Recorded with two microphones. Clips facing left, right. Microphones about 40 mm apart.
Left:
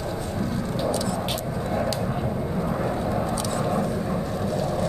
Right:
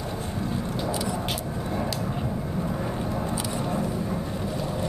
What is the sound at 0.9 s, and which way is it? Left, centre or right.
Vehicle, centre.